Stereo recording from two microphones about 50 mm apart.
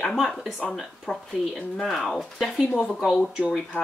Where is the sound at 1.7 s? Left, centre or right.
Centre.